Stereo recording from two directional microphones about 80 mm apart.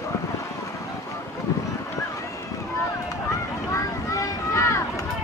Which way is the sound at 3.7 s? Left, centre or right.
Left.